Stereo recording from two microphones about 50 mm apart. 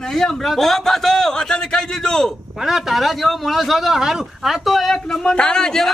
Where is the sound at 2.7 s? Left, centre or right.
Centre.